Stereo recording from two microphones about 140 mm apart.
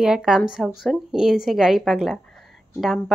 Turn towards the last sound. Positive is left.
turn(degrees=0)  # may be behind; listen again after turning